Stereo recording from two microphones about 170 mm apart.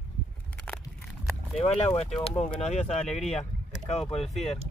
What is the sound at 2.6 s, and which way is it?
Speech, 40° left (ahead or behind).